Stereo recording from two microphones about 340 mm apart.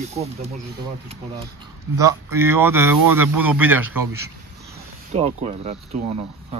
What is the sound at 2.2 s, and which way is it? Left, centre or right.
Speech, centre.